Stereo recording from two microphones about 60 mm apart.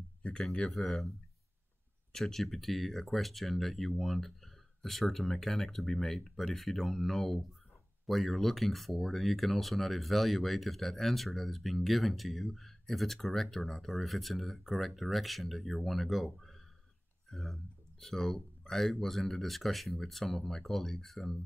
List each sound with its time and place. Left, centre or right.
0.2 s speech: centre
0.7 s speech: centre
2.1 s speech: centre